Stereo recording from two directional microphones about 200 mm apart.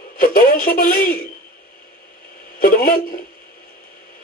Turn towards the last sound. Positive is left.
turn(degrees=45)  # may be behind; listen again after turning